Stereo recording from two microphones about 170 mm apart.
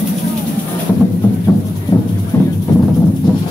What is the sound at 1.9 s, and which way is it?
Music, 15° left (ahead or behind).